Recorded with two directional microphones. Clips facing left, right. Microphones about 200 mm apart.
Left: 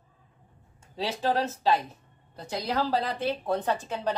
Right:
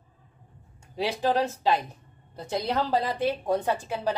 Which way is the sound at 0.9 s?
15° right (ahead or behind).